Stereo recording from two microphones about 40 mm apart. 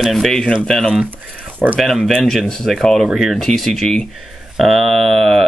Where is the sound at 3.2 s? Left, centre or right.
Centre.